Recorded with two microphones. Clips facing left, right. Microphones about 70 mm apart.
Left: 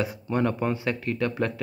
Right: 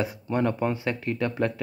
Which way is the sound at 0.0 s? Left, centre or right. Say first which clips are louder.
Even; centre.